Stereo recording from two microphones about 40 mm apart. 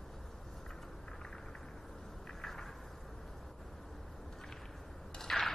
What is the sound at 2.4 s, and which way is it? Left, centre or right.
Vehicle, centre.